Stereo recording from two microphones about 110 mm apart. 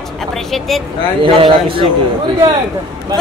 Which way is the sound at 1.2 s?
50° right (ahead or behind).